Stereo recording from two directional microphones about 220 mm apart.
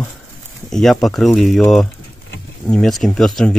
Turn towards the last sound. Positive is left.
turn(degrees=0)  # may be behind; listen again after turning